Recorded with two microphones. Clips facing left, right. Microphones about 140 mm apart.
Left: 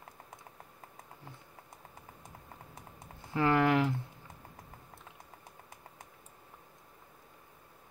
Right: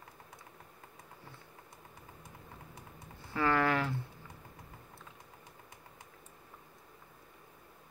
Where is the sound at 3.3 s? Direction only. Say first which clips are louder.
Left 3 dB; 15° left (ahead or behind).